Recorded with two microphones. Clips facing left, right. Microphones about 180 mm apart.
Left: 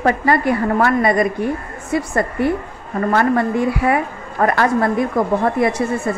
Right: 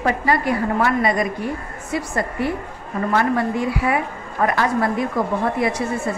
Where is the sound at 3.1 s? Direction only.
55° left (ahead or behind).